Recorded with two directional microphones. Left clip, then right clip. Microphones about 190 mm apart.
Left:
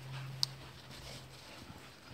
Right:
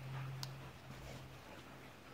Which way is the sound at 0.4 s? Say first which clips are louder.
Left 17 dB; 20° right (ahead or behind).